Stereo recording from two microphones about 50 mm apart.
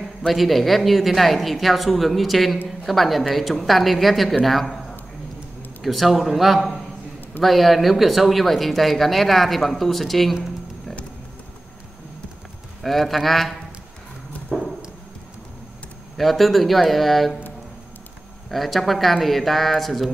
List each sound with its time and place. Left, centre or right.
0.3 s speech: centre
5.8 s speech: centre
12.8 s speech: centre
14.5 s a sound: centre
16.2 s speech: centre
18.5 s speech: centre